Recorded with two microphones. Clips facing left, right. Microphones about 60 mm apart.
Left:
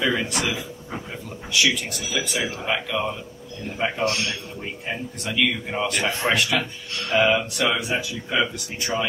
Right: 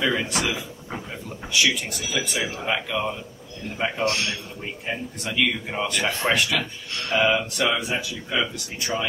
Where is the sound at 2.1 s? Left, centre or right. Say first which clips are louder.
Left 1 dB; left.